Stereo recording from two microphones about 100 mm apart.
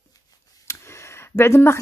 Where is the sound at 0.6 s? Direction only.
25° left (ahead or behind).